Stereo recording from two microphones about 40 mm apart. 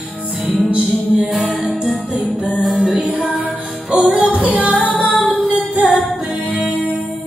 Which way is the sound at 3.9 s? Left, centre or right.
Right.